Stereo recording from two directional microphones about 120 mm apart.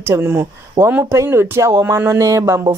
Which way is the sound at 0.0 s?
20° right (ahead or behind).